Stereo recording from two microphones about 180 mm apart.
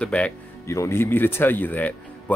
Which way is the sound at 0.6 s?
15° left (ahead or behind).